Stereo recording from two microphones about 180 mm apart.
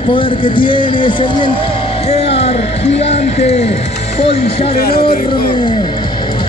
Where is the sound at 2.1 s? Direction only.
35° left (ahead or behind).